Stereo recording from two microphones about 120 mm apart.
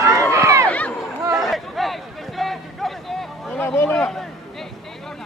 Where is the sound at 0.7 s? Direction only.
10° left (ahead or behind).